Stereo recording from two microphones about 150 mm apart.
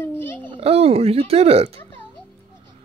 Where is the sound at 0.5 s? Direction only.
40° right (ahead or behind).